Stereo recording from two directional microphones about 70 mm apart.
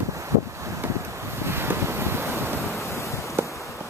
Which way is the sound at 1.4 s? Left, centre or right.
Right.